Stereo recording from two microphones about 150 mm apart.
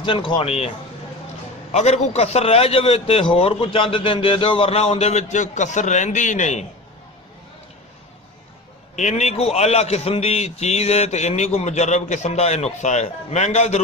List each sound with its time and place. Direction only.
0.0 s a man's voice: 35° left (ahead or behind)
1.7 s a man's voice: 50° left (ahead or behind)
8.9 s a man's voice: 50° left (ahead or behind)